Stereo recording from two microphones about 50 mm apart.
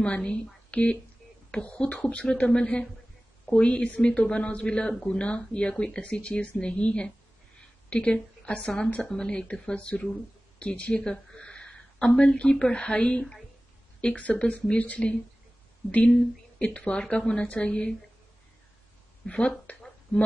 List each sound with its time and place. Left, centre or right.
0.0 s speech: left
10.6 s a sound: left
12.2 s speech: left
14.1 s speech: left
16.6 s speech: left
19.2 s speech: left